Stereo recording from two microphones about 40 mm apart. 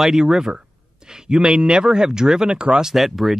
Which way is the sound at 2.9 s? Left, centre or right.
Centre.